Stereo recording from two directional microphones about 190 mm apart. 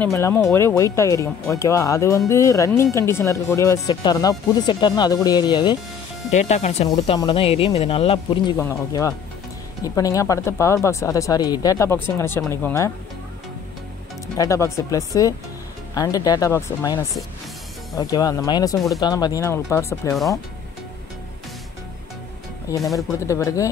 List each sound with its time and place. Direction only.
0.0 s speech: 15° left (ahead or behind)
6.3 s speech: 35° left (ahead or behind)
8.5 s speech: 15° left (ahead or behind)
14.2 s speech: 15° left (ahead or behind)
22.7 s speech: 15° left (ahead or behind)